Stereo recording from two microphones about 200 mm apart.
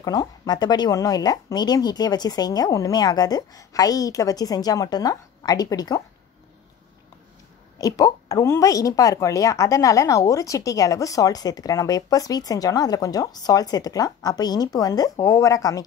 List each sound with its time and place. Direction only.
0.0 s speech: 20° left (ahead or behind)
7.8 s speech: 15° left (ahead or behind)